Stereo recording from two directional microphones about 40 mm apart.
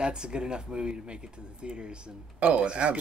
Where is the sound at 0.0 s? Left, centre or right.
Right.